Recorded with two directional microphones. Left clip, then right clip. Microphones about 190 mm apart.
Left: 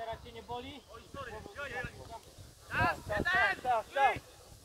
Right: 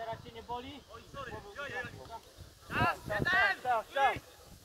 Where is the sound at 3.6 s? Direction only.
50° right (ahead or behind).